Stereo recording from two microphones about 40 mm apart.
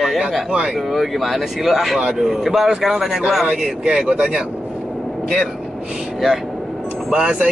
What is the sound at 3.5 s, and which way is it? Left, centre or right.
Speech, centre.